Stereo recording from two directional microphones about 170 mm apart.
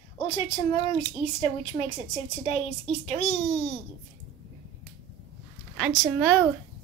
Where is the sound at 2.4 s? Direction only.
35° left (ahead or behind).